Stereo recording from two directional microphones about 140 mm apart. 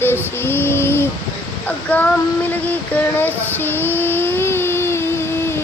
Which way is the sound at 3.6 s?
15° left (ahead or behind).